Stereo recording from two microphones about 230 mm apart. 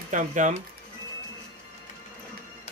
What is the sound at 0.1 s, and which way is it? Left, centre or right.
Speech, right.